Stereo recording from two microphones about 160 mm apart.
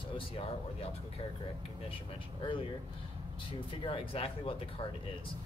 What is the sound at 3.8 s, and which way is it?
Speech, 35° left (ahead or behind).